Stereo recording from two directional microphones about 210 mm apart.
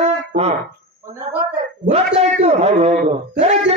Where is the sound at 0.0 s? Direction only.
30° right (ahead or behind).